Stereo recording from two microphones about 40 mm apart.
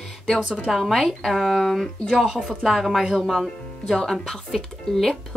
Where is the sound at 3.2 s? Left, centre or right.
Centre.